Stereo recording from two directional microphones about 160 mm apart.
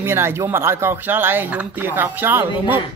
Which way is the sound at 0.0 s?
15° right (ahead or behind).